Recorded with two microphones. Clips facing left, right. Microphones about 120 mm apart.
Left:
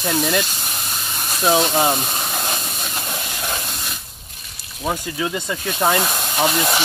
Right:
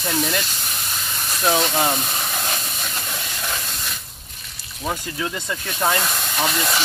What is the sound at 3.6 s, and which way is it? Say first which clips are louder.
Spray: left 2 dB; 10° left (ahead or behind).